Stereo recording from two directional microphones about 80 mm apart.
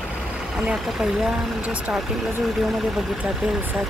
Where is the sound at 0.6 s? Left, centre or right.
Centre.